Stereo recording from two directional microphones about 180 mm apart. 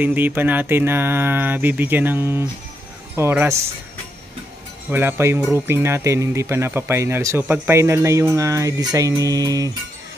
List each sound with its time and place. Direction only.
0.0 s speech: 10° right (ahead or behind)
4.8 s speech: 10° right (ahead or behind)